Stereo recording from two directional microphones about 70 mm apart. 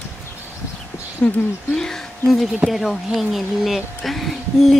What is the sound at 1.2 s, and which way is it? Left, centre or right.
Speech, centre.